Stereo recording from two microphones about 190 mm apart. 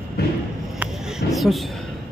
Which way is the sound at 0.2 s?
55° left (ahead or behind).